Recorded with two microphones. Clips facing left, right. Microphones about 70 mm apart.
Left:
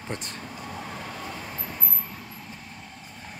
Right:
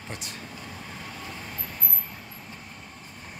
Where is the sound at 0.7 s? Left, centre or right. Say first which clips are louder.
Left 4 dB; left.